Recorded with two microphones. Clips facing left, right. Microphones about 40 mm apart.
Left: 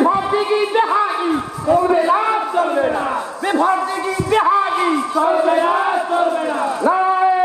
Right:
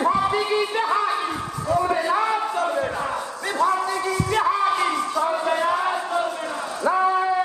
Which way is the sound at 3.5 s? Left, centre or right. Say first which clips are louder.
Left 4 dB; left.